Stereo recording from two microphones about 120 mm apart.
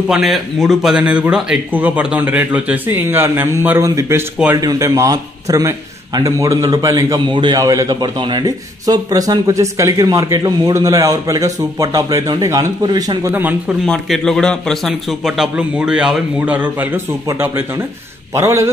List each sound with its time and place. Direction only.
0.1 s a man's voice: centre (ahead or behind); by 13.1 s 35° right (ahead or behind)
13.3 s speech: 15° right (ahead or behind)
13.8 s a man's voice: 5° left (ahead or behind); by 18.7 s 25° right (ahead or behind)